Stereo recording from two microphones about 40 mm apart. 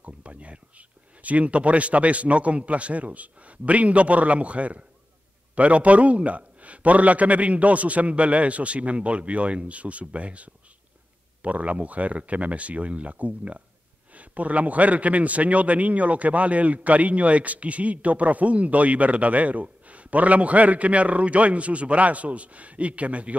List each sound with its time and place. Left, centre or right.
0.0 s a man's voice: right